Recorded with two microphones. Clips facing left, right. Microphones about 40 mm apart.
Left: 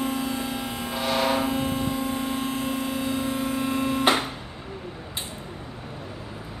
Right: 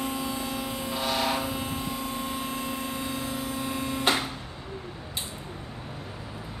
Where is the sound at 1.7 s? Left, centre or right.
Centre.